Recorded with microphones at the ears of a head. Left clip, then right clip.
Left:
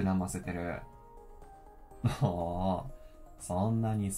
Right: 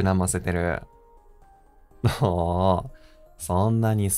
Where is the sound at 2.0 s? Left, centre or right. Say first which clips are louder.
Right 10 dB; right.